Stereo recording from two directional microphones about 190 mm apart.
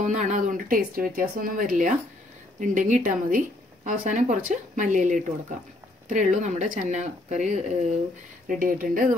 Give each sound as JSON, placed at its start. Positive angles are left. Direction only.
{"t": 0.0, "sound": "speech", "side_deg": -40}